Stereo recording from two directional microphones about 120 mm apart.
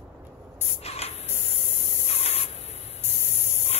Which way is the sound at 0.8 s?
60° left (ahead or behind).